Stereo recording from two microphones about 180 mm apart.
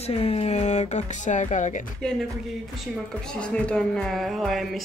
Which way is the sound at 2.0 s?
5° left (ahead or behind).